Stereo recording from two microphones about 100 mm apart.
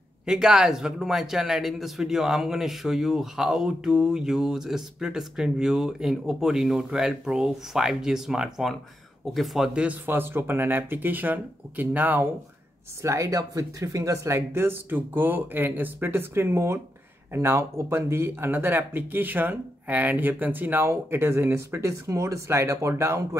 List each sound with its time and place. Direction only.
0.3 s speech: 5° right (ahead or behind)
10.0 s speech: 20° right (ahead or behind)
13.0 s speech: 30° right (ahead or behind)